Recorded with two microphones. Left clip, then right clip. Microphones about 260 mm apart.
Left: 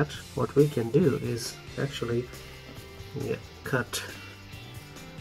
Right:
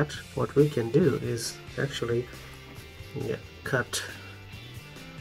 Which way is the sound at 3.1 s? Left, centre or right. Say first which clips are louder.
Even; centre.